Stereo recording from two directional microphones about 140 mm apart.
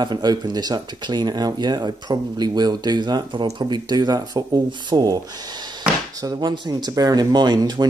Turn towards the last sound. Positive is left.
turn(degrees=-30)  # may be behind; listen again after turning